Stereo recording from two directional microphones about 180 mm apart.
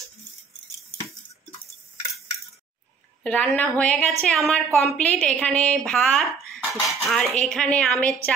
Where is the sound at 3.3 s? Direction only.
10° left (ahead or behind).